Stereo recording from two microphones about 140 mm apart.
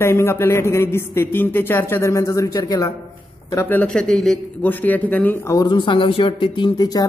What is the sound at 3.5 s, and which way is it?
A man's voice, 15° left (ahead or behind).